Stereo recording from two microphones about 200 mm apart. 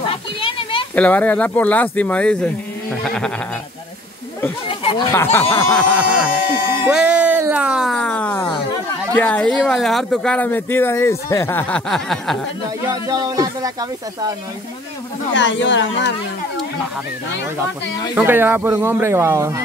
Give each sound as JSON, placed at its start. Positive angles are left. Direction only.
{"t": 0.0, "sound": "a sound", "side_deg": 25}
{"t": 0.9, "sound": "speech", "side_deg": 5}
{"t": 4.6, "sound": "a sound", "side_deg": 25}
{"t": 5.1, "sound": "speech", "side_deg": 10}
{"t": 5.9, "sound": "speech", "side_deg": -5}
{"t": 6.9, "sound": "music", "side_deg": -5}
{"t": 9.1, "sound": "speech", "side_deg": 5}
{"t": 12.8, "sound": "speech", "side_deg": -15}
{"t": 15.3, "sound": "speech", "side_deg": 65}
{"t": 18.1, "sound": "speech", "side_deg": -10}